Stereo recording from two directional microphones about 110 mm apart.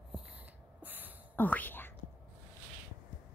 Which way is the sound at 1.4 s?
15° left (ahead or behind).